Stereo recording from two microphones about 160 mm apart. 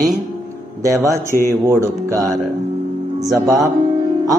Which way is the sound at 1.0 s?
20° right (ahead or behind).